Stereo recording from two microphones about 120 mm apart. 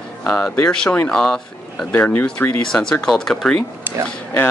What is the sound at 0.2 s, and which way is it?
Speech, 5° left (ahead or behind).